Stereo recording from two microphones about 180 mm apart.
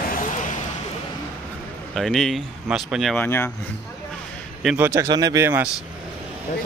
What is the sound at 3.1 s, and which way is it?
Vehicle, 10° left (ahead or behind).